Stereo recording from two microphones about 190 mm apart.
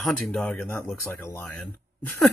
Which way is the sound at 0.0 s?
5° left (ahead or behind).